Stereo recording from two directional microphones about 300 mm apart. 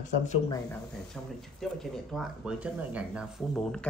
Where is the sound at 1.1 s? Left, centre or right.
Centre.